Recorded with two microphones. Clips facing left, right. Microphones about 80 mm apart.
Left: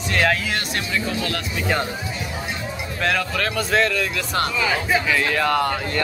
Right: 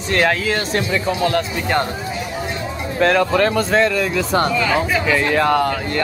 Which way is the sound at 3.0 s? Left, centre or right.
Centre.